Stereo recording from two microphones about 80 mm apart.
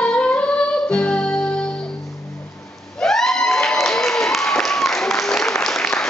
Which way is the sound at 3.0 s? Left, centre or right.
Centre.